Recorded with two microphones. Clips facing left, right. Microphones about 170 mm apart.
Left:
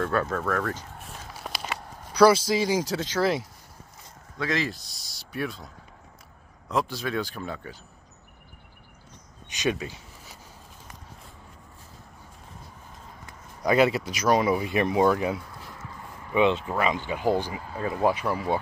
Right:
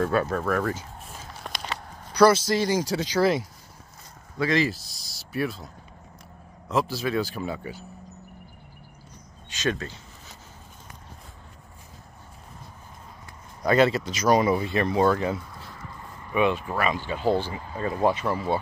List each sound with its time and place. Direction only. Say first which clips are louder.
0.0 s speech: right 2 dB; 10° right (ahead or behind)
6.7 s speech: right 2 dB; 5° right (ahead or behind)
9.5 s a sound: even; 15° left (ahead or behind)
13.6 s speech: right 1 dB; 10° left (ahead or behind)
16.3 s speech: left 1 dB; 20° left (ahead or behind)